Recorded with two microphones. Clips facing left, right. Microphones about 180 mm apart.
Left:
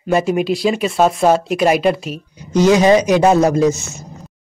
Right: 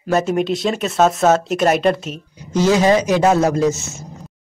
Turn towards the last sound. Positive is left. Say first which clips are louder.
# left 3 dB
turn(degrees=15)  # may be behind; listen again after turning